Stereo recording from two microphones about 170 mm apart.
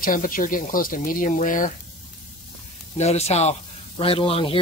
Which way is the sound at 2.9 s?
40° left (ahead or behind).